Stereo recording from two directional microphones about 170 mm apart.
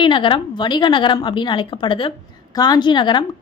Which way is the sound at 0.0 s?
30° left (ahead or behind).